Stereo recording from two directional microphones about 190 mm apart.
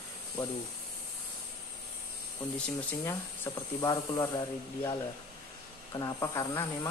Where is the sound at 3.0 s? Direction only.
15° left (ahead or behind).